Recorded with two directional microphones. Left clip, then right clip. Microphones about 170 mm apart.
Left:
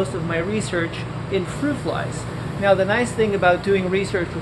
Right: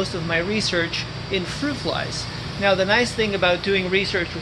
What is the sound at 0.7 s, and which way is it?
Speech, 45° right (ahead or behind).